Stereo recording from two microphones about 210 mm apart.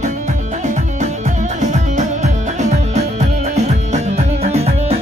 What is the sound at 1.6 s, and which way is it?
Music, 35° right (ahead or behind).